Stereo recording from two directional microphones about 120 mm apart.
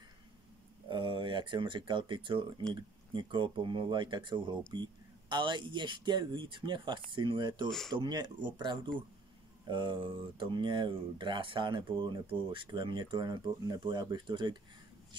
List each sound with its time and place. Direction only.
0.8 s speech: 40° right (ahead or behind)